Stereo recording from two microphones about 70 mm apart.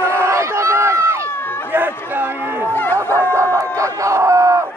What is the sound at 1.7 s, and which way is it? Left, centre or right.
Chatter, right.